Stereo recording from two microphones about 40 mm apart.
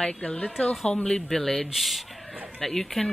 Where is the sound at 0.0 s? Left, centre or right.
Left.